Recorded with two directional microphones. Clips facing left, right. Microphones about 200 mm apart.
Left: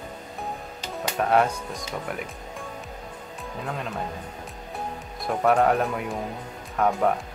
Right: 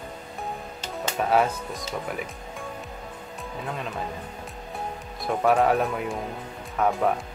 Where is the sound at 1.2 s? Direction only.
Centre (ahead or behind).